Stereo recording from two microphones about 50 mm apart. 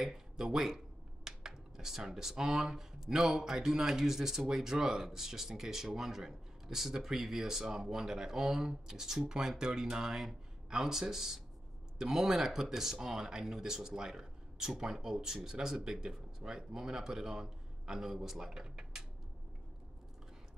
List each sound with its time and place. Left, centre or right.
0.0 s speech: centre